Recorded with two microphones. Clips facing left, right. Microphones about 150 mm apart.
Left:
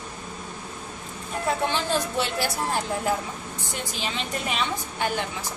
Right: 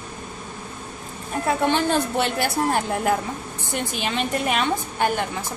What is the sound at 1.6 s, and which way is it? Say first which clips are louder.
A woman's voice: right 5 dB; 55° right (ahead or behind).